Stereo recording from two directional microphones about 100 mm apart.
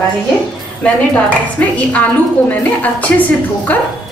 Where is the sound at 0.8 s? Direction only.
15° left (ahead or behind).